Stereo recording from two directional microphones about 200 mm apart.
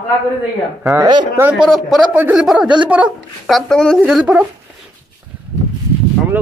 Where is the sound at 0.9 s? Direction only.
20° right (ahead or behind).